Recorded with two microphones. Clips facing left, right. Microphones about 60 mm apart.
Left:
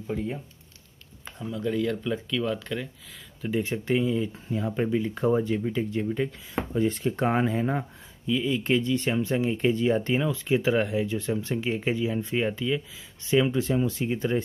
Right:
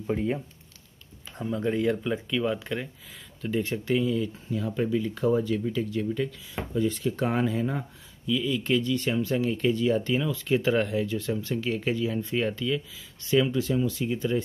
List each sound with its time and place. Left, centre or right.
0.1 s speech: right
1.4 s speech: right
1.7 s speech: right
3.4 s speech: centre; by 14.4 s left